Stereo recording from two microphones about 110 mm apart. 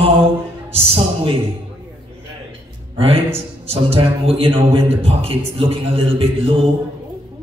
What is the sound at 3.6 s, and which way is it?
Music, 60° right (ahead or behind).